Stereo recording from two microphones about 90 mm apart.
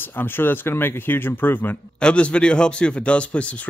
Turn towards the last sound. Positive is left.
turn(degrees=15)  # may be behind; listen again after turning